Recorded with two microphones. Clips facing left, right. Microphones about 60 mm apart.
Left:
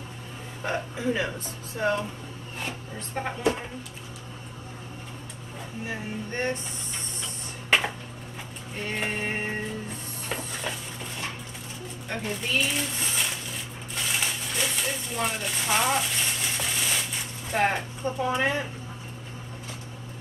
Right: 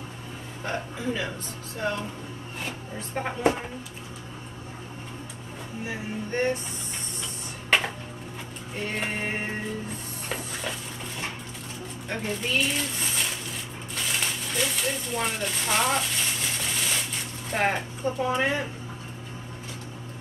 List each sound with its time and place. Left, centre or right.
0.7 s a man's voice: centre
2.6 s speech: centre
5.9 s speech: centre
8.7 s speech: centre
10.2 s a sound: centre
12.1 s speech: centre
13.9 s a sound: centre
17.5 s speech: centre